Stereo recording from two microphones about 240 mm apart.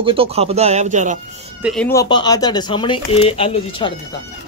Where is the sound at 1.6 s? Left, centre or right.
Centre.